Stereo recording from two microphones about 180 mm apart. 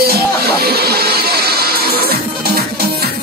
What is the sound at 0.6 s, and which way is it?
Speech, 60° right (ahead or behind).